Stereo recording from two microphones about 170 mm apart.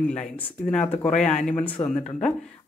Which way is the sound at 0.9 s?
40° left (ahead or behind).